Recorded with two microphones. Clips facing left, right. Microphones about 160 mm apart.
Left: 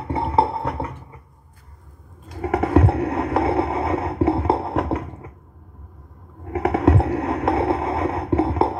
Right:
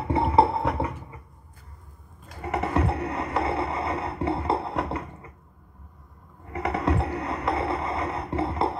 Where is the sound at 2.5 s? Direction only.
55° left (ahead or behind).